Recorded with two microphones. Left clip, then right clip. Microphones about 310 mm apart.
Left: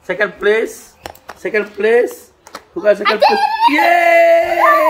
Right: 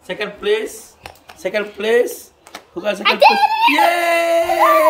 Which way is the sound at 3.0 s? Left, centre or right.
Right.